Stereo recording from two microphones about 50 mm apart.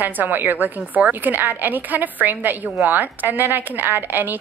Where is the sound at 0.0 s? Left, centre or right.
Right.